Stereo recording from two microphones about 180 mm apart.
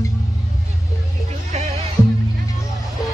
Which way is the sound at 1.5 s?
35° right (ahead or behind).